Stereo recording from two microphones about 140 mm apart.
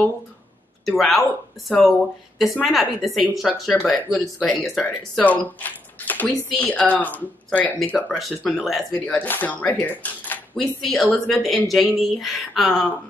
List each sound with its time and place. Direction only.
0.8 s a woman's voice: centre (ahead or behind)
5.2 s speech: 10° left (ahead or behind)
10.5 s a woman's voice: centre (ahead or behind)